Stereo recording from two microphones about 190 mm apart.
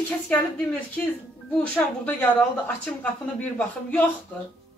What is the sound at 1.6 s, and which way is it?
A woman's voice, 5° left (ahead or behind).